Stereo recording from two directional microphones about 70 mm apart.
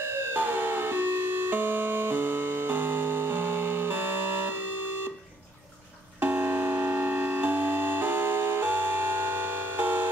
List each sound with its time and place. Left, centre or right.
0.0 s siren: right
0.4 s music: right
6.2 s music: right